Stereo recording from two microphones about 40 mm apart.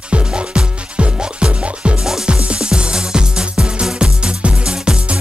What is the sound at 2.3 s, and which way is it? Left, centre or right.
Music, right.